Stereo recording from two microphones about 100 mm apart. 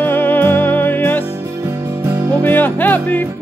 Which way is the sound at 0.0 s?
20° left (ahead or behind).